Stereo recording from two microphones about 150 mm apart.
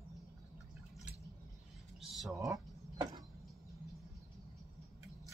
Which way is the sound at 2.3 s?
25° right (ahead or behind).